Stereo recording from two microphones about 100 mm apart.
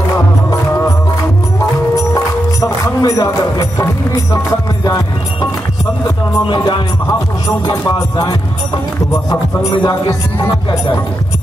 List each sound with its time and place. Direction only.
2.1 s music: 35° left (ahead or behind)
4.8 s speech: 35° left (ahead or behind)
6.6 s music: 35° left (ahead or behind)
9.7 s speech: 35° left (ahead or behind)